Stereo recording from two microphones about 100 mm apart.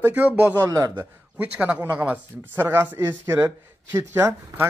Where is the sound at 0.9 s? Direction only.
15° right (ahead or behind).